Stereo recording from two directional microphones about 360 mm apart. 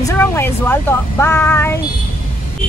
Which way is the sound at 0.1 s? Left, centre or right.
Centre.